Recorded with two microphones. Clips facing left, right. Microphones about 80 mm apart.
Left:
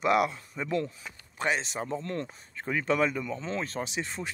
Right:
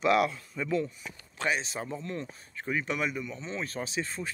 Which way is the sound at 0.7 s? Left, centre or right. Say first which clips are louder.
Even; left.